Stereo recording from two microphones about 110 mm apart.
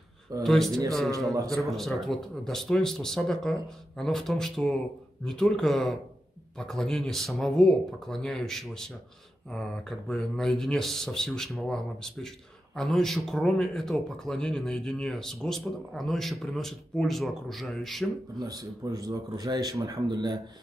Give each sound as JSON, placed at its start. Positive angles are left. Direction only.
{"t": 0.4, "sound": "speech", "side_deg": 0}
{"t": 1.8, "sound": "speech", "side_deg": 0}
{"t": 18.4, "sound": "speech", "side_deg": -35}